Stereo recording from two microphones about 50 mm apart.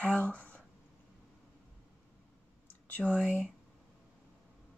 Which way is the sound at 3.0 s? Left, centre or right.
Right.